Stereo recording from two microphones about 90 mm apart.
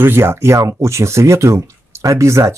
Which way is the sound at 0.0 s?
25° right (ahead or behind).